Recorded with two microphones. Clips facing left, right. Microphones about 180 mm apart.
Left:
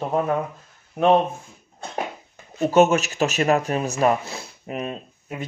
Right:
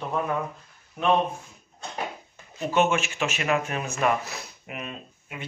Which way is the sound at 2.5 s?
40° left (ahead or behind).